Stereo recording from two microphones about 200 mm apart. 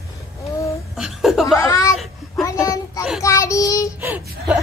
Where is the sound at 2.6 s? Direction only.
15° left (ahead or behind).